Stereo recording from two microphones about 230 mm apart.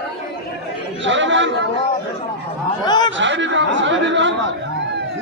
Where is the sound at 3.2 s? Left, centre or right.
Right.